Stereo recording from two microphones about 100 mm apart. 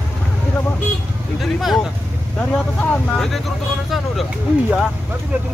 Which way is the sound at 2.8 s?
5° left (ahead or behind).